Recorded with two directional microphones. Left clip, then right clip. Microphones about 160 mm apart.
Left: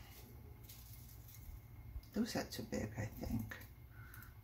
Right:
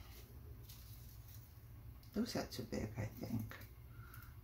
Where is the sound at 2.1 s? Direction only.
Centre (ahead or behind).